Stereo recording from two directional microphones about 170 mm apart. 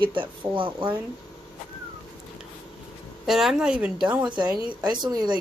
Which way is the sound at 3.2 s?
Centre (ahead or behind).